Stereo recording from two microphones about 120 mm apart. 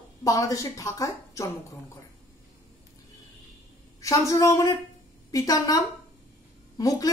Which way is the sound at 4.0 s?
25° left (ahead or behind).